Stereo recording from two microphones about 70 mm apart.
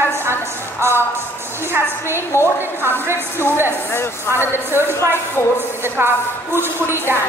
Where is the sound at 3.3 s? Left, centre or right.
Left.